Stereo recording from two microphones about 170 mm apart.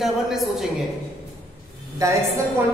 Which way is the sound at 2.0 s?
20° right (ahead or behind).